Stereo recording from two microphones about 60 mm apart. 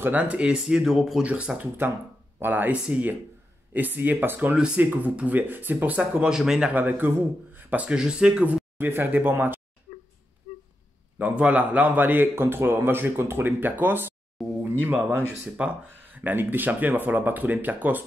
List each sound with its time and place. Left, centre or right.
0.2 s speech: centre
1.2 s speech: right
1.8 s a man's voice: right
4.6 s a man's voice: centre
6.2 s speech: centre
6.7 s a man's voice: right
7.5 s a sound: right
7.9 s speech: centre
8.7 s a man's voice: right
11.1 s a man's voice: right
14.6 s a sound: right
14.9 s a man's voice: right
15.5 s speech: centre